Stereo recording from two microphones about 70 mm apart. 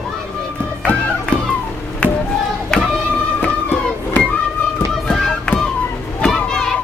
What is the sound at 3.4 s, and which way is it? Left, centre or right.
Music, left.